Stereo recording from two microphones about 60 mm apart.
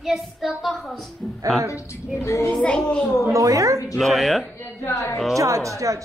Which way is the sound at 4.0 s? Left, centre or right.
Centre.